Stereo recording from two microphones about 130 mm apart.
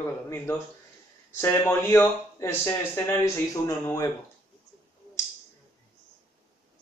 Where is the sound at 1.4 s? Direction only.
20° left (ahead or behind).